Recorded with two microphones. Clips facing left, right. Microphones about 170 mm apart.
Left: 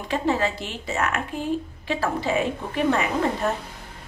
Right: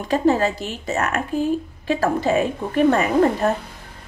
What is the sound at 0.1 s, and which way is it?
A woman's voice, 40° right (ahead or behind).